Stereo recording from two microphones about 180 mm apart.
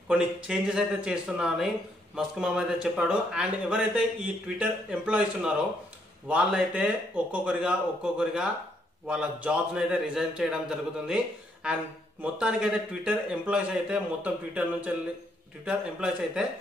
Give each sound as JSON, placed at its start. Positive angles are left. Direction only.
{"t": 0.1, "sound": "speech", "side_deg": -5}
{"t": 12.2, "sound": "speech", "side_deg": -5}